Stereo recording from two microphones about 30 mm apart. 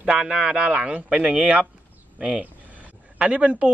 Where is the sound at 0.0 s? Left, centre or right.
Right.